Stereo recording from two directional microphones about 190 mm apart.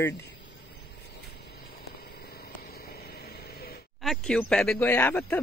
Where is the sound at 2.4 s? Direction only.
55° left (ahead or behind).